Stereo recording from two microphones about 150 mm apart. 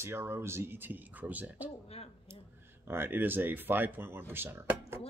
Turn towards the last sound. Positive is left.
turn(degrees=-15)  # may be behind; listen again after turning